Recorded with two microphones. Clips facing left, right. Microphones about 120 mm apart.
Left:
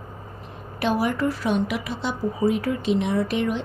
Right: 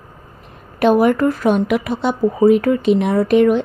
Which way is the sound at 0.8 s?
55° right (ahead or behind).